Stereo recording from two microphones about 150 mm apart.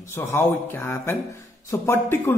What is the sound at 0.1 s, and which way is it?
A man's voice, 15° left (ahead or behind).